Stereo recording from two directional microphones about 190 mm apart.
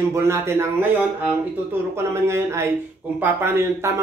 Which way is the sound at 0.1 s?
15° right (ahead or behind).